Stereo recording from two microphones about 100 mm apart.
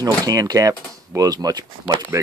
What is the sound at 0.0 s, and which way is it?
Speech, 35° right (ahead or behind).